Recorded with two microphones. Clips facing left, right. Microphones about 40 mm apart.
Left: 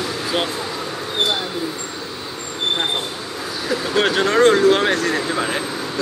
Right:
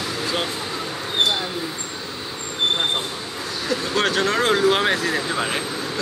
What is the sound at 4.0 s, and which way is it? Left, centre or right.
Speech, centre.